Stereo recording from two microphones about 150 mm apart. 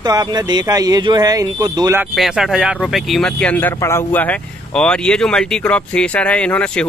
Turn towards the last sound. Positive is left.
turn(degrees=5)  # may be behind; listen again after turning